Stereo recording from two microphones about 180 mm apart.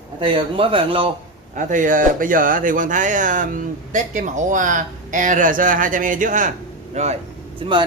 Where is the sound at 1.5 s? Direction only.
45° right (ahead or behind).